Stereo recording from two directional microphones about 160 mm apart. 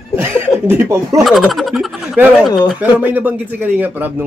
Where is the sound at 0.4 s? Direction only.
15° right (ahead or behind).